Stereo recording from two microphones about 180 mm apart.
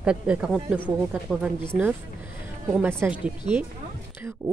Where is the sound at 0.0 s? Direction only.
5° right (ahead or behind).